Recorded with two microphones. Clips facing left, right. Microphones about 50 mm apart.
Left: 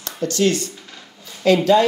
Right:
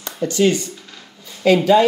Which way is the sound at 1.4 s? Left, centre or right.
Centre.